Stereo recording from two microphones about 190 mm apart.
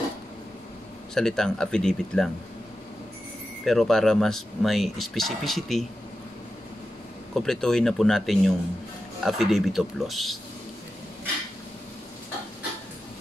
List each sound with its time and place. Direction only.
1.1 s speech: 5° left (ahead or behind)
3.6 s speech: centre (ahead or behind)
7.3 s speech: 5° left (ahead or behind)